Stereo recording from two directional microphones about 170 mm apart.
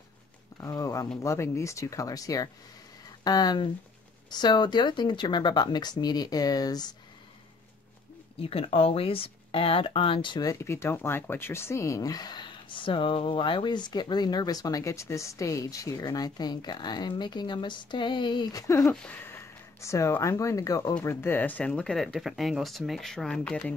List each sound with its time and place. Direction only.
0.6 s speech: 20° left (ahead or behind)
8.4 s speech: 35° left (ahead or behind); by 23.4 s 5° left (ahead or behind)